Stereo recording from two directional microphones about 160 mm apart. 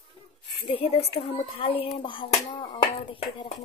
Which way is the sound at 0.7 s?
35° left (ahead or behind).